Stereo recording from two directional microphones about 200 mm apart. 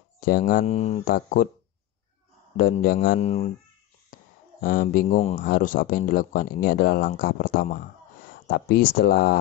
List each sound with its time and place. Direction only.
0.2 s speech: 45° left (ahead or behind)
0.7 s speech: 30° left (ahead or behind)
1.0 s speech: 45° left (ahead or behind)
2.5 s speech: 45° left (ahead or behind)
3.3 s speech: 30° left (ahead or behind)
4.6 s speech: 45° left (ahead or behind)